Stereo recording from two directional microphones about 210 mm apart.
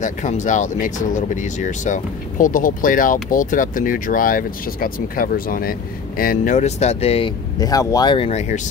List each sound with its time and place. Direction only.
0.0 s speech: 35° left (ahead or behind)